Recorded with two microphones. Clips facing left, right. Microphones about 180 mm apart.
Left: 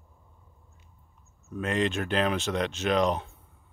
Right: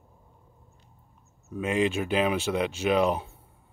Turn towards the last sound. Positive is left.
turn(degrees=-5)  # may be behind; listen again after turning